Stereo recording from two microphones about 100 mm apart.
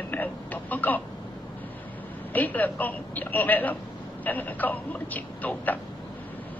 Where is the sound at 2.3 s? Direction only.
15° left (ahead or behind).